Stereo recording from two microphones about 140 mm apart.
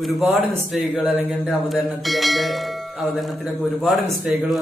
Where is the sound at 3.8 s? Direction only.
Centre (ahead or behind).